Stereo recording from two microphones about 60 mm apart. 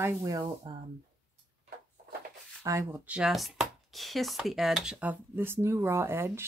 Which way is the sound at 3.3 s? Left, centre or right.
Centre.